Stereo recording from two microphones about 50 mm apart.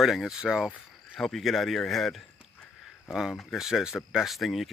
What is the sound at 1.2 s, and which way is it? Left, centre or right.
Speech, centre.